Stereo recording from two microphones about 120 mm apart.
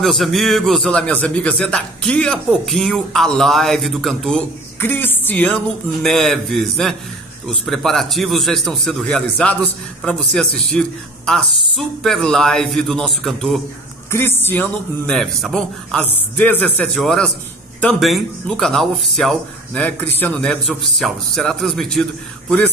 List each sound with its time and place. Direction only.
0.0 s a man's voice: centre (ahead or behind)
4.7 s music: 20° left (ahead or behind)
6.0 s a man's voice: 5° left (ahead or behind)
14.1 s speech: 20° left (ahead or behind)
15.0 s a man's voice: 5° left (ahead or behind)